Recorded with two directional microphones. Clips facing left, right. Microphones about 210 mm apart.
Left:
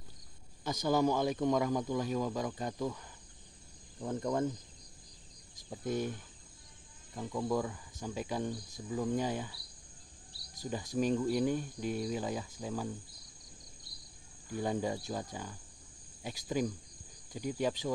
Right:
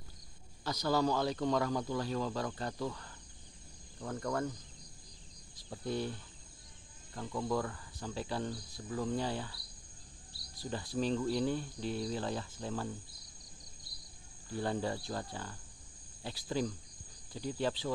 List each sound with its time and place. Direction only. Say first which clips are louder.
0.8 s speech: left 2 dB; 20° left (ahead or behind)
5.7 s speech: left 2 dB; 15° left (ahead or behind)
10.6 s speech: left 2 dB; 15° left (ahead or behind)
14.5 s speech: left 1 dB; 15° left (ahead or behind)